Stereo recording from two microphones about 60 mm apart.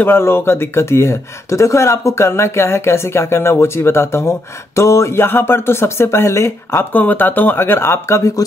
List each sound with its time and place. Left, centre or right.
0.0 s speech: left
8.4 s speech: left